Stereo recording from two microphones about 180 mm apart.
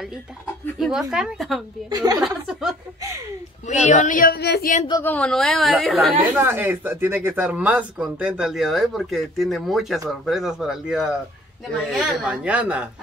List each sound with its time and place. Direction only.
0.7 s speech: centre (ahead or behind)
1.9 s a woman's voice: 20° right (ahead or behind)
2.2 s speech: 5° right (ahead or behind)
3.6 s a woman's voice: 40° left (ahead or behind); by 4.7 s 60° left (ahead or behind)
5.0 s speech: 5° left (ahead or behind)
6.3 s a woman's voice: 10° right (ahead or behind)